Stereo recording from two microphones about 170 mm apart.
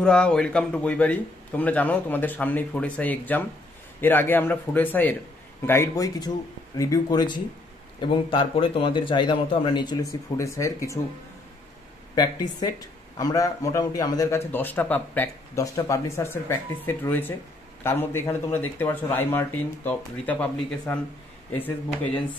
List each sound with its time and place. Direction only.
0.0 s a man's voice: 5° left (ahead or behind)
13.2 s a man's voice: 20° left (ahead or behind)